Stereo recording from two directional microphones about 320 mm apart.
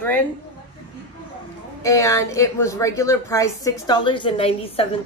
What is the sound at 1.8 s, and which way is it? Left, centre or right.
Speech, centre.